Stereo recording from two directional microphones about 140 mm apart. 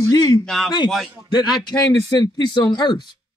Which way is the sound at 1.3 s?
30° left (ahead or behind).